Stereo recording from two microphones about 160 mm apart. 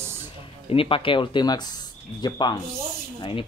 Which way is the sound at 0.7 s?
35° left (ahead or behind).